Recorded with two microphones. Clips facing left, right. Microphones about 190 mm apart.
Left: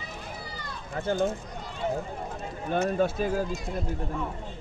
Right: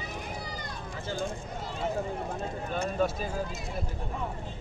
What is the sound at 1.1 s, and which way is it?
Speech, 55° left (ahead or behind).